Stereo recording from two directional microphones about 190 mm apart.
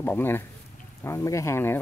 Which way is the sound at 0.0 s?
10° left (ahead or behind).